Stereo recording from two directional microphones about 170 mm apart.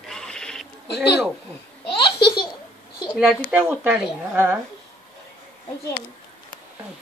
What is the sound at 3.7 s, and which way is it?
Speech, 10° right (ahead or behind).